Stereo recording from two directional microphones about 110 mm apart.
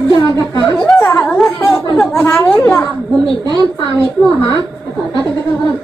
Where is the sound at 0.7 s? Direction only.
5° left (ahead or behind).